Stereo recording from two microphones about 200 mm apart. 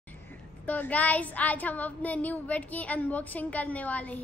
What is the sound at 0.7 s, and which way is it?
Speech, 5° left (ahead or behind).